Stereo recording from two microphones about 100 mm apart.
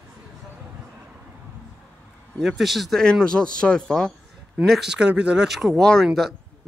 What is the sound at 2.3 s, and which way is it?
Speech, centre (ahead or behind).